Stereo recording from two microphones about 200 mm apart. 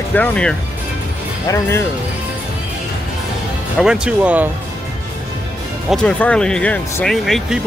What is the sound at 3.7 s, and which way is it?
Speech, 5° right (ahead or behind).